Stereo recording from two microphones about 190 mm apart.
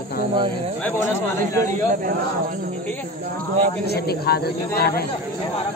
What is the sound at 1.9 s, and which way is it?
Speech, 45° right (ahead or behind).